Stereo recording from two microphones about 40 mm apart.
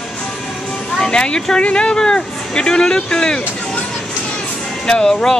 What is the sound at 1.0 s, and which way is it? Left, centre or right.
Speech, left.